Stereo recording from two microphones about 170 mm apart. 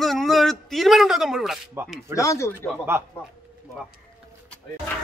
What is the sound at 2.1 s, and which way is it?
Speech, 15° left (ahead or behind).